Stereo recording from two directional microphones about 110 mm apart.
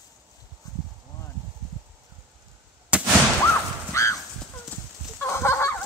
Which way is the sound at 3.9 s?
25° left (ahead or behind).